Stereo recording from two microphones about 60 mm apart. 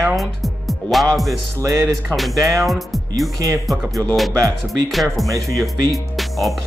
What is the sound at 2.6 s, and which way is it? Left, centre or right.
Speech, centre.